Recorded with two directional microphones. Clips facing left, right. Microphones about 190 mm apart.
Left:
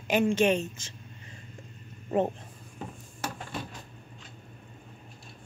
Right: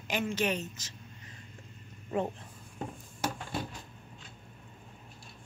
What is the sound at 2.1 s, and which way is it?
Speech, 45° left (ahead or behind).